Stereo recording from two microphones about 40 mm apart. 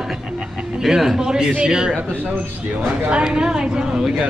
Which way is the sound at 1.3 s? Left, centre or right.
Centre.